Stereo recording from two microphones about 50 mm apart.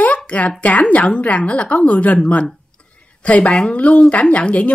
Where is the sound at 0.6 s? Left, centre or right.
Left.